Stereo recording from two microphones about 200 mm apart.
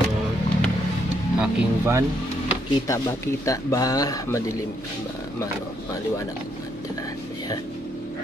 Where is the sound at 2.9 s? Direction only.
15° left (ahead or behind).